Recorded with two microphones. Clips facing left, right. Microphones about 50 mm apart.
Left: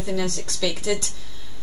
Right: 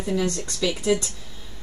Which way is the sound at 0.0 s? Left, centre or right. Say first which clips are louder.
Right 2 dB; centre.